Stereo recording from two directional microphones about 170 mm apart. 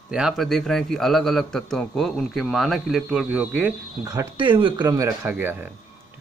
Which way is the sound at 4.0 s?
20° right (ahead or behind).